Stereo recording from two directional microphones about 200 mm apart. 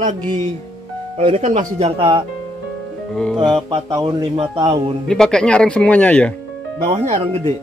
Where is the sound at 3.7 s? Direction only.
15° right (ahead or behind).